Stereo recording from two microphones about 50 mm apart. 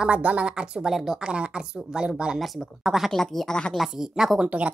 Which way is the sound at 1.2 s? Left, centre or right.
Centre.